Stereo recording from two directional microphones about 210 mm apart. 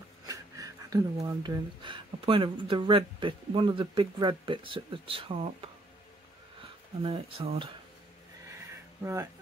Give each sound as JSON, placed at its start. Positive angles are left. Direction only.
{"t": 0.3, "sound": "wheeze", "side_deg": -15}
{"t": 1.2, "sound": "speech", "side_deg": -15}
{"t": 7.0, "sound": "speech", "side_deg": -25}
{"t": 9.0, "sound": "speech", "side_deg": -15}